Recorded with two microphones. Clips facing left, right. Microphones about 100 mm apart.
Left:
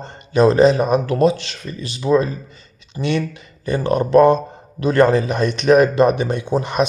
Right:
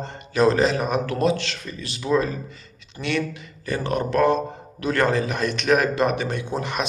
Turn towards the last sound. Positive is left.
turn(degrees=20)  # may be behind; listen again after turning